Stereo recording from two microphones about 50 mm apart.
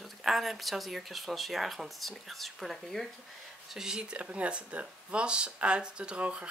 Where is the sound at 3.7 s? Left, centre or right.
Centre.